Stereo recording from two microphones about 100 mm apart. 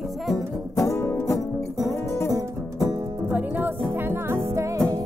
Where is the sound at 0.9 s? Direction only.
30° left (ahead or behind).